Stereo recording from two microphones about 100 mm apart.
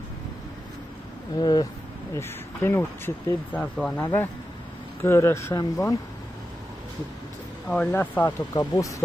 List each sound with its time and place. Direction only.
1.4 s speech: 45° left (ahead or behind)
2.1 s speech: 25° left (ahead or behind)
3.5 s speech: 10° left (ahead or behind)
4.0 s speech: 25° left (ahead or behind)
7.6 s speech: 10° left (ahead or behind)
8.3 s speech: 35° left (ahead or behind)